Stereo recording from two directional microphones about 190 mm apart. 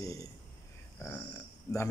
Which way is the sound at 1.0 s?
10° left (ahead or behind).